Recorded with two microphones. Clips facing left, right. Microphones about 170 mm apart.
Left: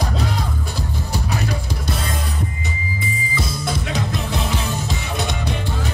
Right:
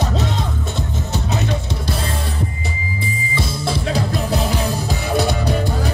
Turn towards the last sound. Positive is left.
turn(degrees=-35)  # may be behind; listen again after turning